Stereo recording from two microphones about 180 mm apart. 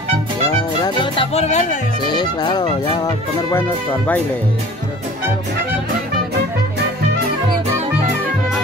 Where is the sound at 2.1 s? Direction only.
25° left (ahead or behind).